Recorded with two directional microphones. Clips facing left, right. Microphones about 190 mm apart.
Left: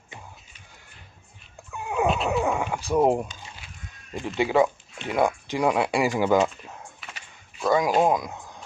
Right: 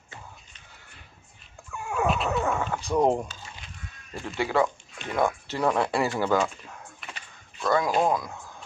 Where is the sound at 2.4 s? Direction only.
15° left (ahead or behind).